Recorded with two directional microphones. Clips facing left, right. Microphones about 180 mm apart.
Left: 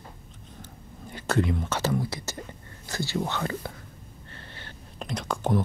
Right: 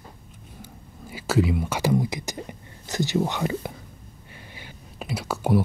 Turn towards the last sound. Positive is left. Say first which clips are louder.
# right 3 dB
turn(degrees=-10)  # may be behind; listen again after turning